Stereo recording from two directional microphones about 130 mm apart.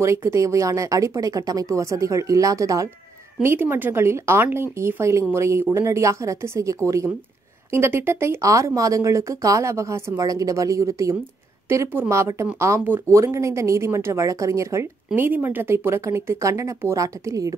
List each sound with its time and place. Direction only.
0.0 s speech: 20° right (ahead or behind)